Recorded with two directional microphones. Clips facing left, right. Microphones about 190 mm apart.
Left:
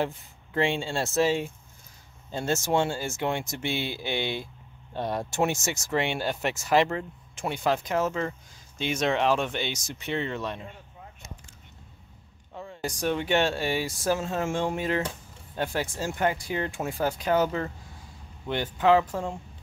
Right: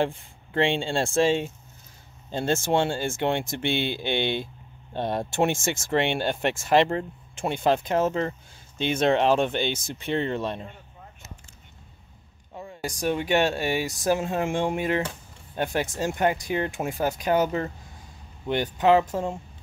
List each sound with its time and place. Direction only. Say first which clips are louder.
0.0 s speech: right 3 dB; 30° right (ahead or behind)
12.5 s speech: even; 15° right (ahead or behind)